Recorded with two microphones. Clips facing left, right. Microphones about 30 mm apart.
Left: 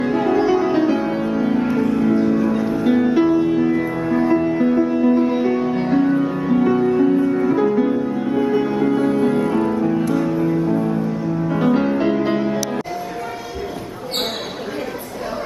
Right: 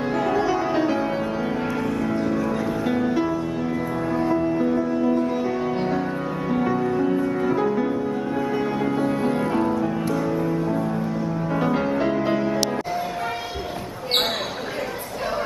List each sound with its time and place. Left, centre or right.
0.0 s music: centre
3.3 s music: left
4.0 s music: centre
4.3 s music: left
5.9 s music: centre
6.7 s music: centre
7.2 s music: centre